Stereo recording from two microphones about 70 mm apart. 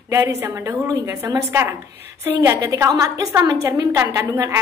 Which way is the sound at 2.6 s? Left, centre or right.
Right.